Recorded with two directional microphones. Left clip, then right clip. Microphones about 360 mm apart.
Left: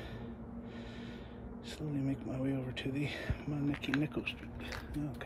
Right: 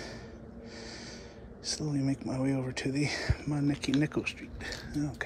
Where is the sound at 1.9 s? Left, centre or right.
Centre.